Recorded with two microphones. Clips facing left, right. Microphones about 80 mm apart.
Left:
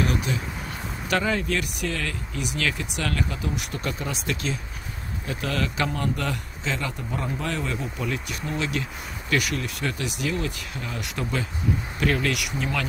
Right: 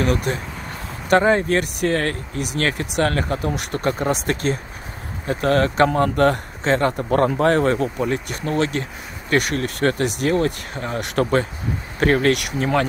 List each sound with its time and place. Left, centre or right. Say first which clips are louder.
0.0 s speech: right 5 dB; right
7.1 s speech: right 15 dB; right
7.3 s speech: right 12 dB; right